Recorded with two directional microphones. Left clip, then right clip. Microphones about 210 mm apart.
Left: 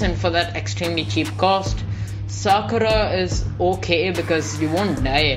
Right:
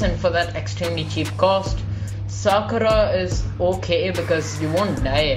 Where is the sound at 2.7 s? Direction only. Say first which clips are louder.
Right 1 dB; 25° left (ahead or behind).